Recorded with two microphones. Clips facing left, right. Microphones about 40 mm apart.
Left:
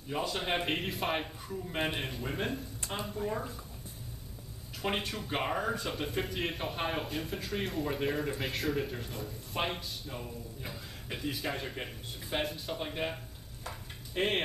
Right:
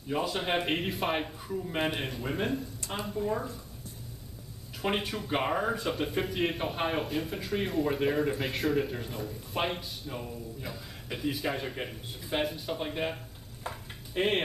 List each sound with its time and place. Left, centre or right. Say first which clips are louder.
0.1 s a man's voice: right 3 dB; centre
4.8 s a man's voice: right 3 dB; centre
13.7 s a sound: right 5 dB; right
14.1 s a man's voice: right 3 dB; centre